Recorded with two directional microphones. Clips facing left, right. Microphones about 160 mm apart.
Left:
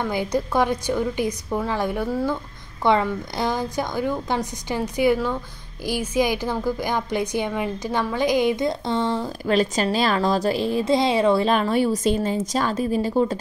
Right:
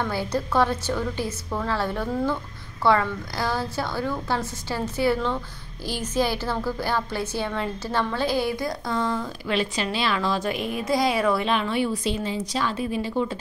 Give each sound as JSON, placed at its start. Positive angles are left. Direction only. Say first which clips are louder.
{"t": 0.0, "sound": "a woman's voice", "louder": "left 3 dB", "side_deg": 15}
{"t": 11.4, "sound": "a woman's voice", "louder": "left 4 dB", "side_deg": 40}